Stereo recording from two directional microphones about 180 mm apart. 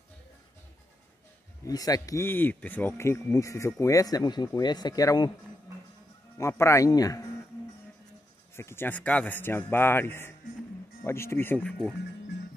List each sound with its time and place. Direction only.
1.6 s speech: 20° left (ahead or behind)
6.3 s speech: 15° left (ahead or behind)
8.5 s speech: 15° left (ahead or behind)